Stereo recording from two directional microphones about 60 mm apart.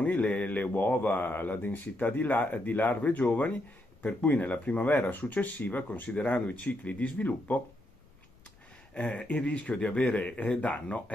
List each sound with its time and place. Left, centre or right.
0.0 s speech: left
8.9 s speech: centre